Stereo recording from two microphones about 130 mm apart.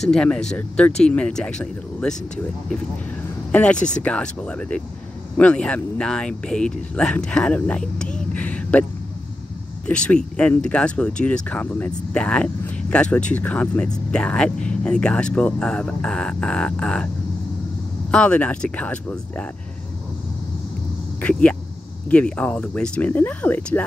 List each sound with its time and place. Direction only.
0.0 s speech: 5° left (ahead or behind)
3.7 s speech: 70° left (ahead or behind)
4.0 s speech: 10° left (ahead or behind)
8.3 s a sound: 10° left (ahead or behind)
9.8 s speech: 5° left (ahead or behind)
18.1 s speech: 10° left (ahead or behind)
21.2 s speech: 10° left (ahead or behind)